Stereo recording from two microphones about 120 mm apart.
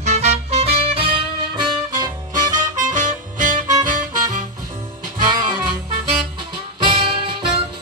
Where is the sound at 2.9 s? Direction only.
90° right.